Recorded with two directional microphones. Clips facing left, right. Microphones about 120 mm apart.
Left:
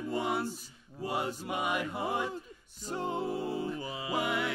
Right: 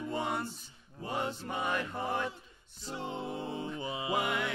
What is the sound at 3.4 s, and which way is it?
Mantra, 25° right (ahead or behind).